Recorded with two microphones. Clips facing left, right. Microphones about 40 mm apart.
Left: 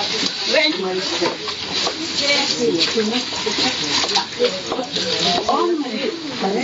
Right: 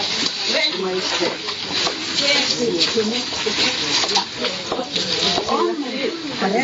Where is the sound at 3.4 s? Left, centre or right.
Right.